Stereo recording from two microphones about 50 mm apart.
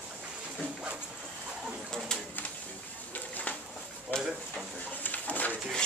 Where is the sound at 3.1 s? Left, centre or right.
Left.